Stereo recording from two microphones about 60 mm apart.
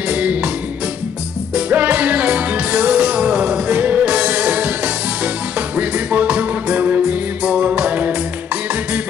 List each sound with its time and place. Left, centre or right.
0.1 s music: right
1.5 s music: right